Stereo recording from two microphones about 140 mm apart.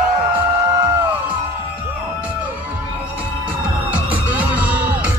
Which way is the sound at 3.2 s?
10° right (ahead or behind).